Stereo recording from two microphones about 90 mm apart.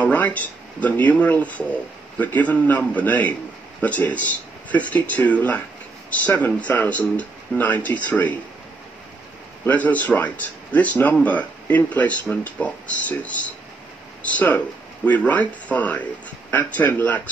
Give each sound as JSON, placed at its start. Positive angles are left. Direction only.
{"t": 0.0, "sound": "speech", "side_deg": 15}
{"t": 9.7, "sound": "speech", "side_deg": 15}